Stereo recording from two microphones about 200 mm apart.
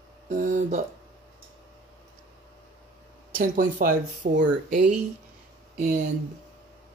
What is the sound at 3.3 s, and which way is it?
Speech, 40° right (ahead or behind).